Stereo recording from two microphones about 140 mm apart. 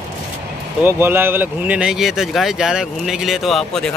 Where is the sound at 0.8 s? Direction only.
15° right (ahead or behind).